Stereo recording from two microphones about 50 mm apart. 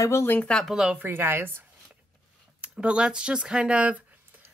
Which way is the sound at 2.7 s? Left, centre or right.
Centre.